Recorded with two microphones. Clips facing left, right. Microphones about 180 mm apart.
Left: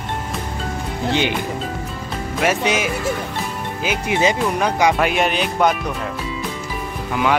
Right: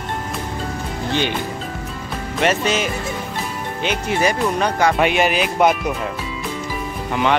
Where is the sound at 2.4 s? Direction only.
10° left (ahead or behind).